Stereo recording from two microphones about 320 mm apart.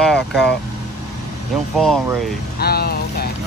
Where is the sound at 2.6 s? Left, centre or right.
Left.